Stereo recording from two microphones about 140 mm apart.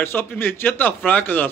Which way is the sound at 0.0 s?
15° left (ahead or behind).